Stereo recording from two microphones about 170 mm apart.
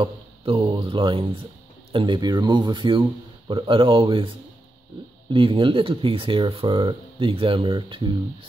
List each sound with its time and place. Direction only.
0.0 s speech: 30° right (ahead or behind)